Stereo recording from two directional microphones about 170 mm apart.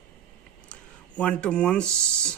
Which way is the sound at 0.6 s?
5° left (ahead or behind).